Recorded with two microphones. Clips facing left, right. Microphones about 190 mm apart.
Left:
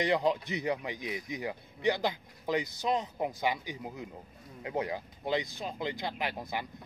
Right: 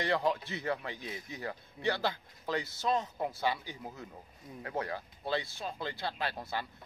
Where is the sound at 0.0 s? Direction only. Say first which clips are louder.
Left 3 dB; 15° left (ahead or behind).